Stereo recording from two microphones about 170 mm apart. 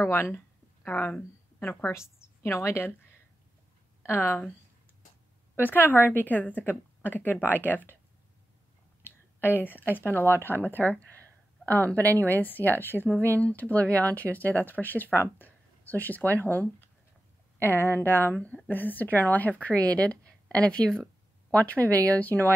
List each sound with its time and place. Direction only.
0.0 s a woman's voice: 15° left (ahead or behind)
4.0 s a woman's voice: 15° left (ahead or behind)
5.6 s a woman's voice: 10° left (ahead or behind)
9.4 s a woman's voice: 10° left (ahead or behind)
21.8 s speech: 20° right (ahead or behind)
22.1 s a woman's voice: 10° left (ahead or behind)